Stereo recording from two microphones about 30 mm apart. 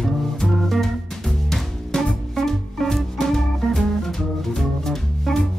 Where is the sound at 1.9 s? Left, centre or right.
Left.